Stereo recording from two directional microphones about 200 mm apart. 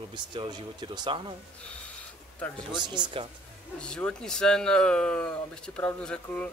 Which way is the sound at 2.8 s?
20° right (ahead or behind).